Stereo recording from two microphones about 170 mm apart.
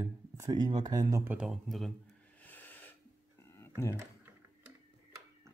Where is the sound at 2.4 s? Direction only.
10° left (ahead or behind).